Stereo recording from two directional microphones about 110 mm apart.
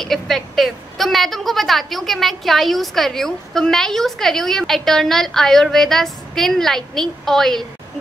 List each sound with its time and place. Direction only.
0.0 s a woman's voice: centre (ahead or behind)